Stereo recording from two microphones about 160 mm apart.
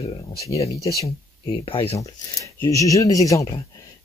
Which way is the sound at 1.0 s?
30° left (ahead or behind).